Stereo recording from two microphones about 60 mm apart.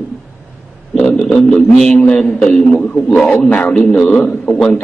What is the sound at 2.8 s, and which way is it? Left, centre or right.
Speech, left.